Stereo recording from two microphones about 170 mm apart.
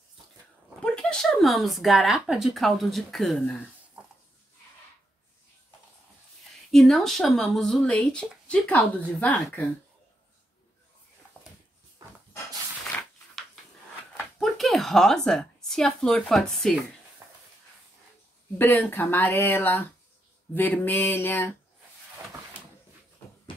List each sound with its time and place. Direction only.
0.8 s speech: 5° left (ahead or behind)
6.7 s speech: centre (ahead or behind)
11.4 s a sound: 10° left (ahead or behind)
14.1 s a woman's voice: centre (ahead or behind)
17.2 s a sound: 15° right (ahead or behind)
18.6 s speech: 10° left (ahead or behind)